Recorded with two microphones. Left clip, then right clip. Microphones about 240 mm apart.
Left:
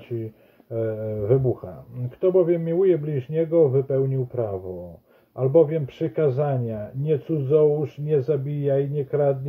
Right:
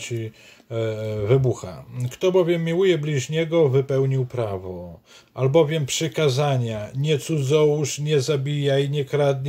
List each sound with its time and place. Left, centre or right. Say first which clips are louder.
0.7 s speech: right 1 dB; right